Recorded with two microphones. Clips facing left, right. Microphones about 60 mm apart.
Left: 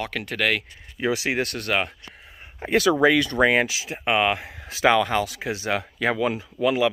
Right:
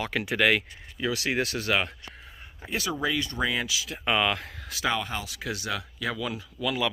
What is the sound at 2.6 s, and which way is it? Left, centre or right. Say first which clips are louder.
Speech: left 11 dB; left.